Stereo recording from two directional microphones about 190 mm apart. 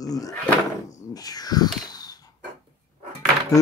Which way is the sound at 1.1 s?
20° left (ahead or behind).